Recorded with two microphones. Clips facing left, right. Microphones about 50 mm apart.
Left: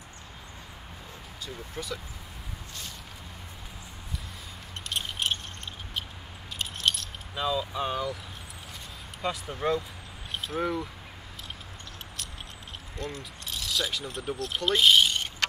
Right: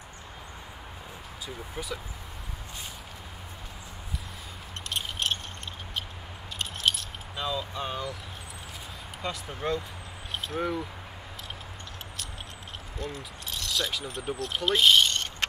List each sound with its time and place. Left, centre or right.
1.4 s speech: centre
4.8 s a sound: centre
6.6 s keys jangling: centre
9.2 s speech: centre
12.9 s speech: centre